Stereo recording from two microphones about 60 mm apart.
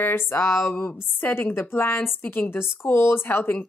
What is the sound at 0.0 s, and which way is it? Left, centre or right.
A woman's voice, left.